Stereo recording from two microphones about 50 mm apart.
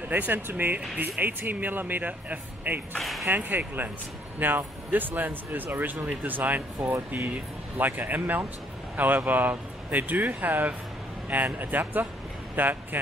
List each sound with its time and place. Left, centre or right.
0.1 s speech: right
0.7 s speech: right
3.0 s speech: centre
3.3 s speech: right